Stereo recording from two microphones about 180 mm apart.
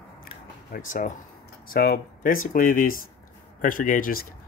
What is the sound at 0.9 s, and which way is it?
Speech, 45° left (ahead or behind).